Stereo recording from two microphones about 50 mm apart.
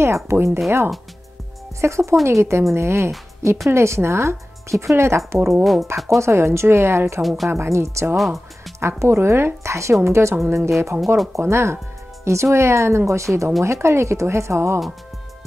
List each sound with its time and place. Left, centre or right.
0.0 s speech: right
1.8 s speech: right
5.5 s speech: centre
6.0 s speech: right
7.2 s speech: centre
7.4 s speech: right
8.2 s music: centre
8.7 s speech: right
12.3 s speech: right
13.6 s speech: right